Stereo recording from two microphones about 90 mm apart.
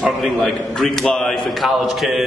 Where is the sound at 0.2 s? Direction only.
Centre (ahead or behind).